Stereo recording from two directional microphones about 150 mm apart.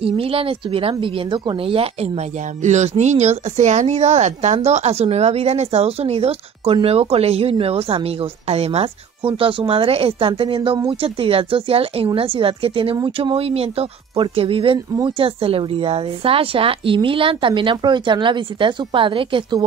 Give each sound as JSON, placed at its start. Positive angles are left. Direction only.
{"t": 0.0, "sound": "speech", "side_deg": -40}